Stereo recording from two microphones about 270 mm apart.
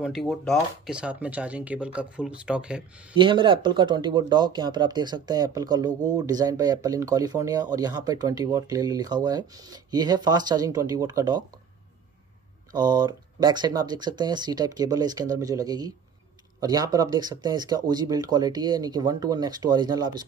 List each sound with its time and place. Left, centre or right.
0.0 s speech: centre
3.2 s speech: centre
12.7 s speech: centre